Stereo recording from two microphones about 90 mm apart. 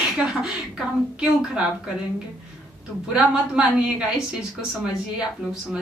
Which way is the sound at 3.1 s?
10° right (ahead or behind).